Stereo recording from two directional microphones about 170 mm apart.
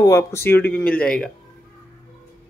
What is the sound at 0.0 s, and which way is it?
Speech, 15° left (ahead or behind).